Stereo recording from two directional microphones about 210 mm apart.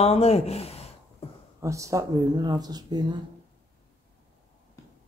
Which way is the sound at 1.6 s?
15° right (ahead or behind).